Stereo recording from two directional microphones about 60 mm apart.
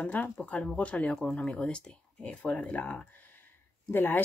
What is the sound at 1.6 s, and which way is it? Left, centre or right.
Speech, centre.